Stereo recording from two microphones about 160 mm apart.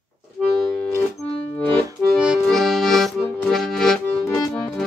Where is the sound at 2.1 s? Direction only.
Centre (ahead or behind).